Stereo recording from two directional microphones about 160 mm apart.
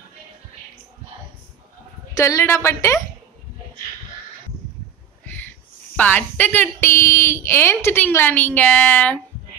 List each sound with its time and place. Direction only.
2.1 s speech: 20° left (ahead or behind)
5.2 s a sound: 10° left (ahead or behind)
5.9 s speech: 10° left (ahead or behind)